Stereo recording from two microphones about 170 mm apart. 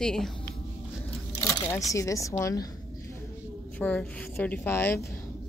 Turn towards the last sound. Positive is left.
turn(degrees=10)  # may be behind; listen again after turning